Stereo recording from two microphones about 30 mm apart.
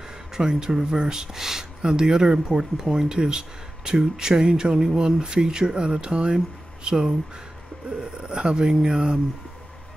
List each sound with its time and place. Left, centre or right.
0.3 s speech: right
1.8 s speech: right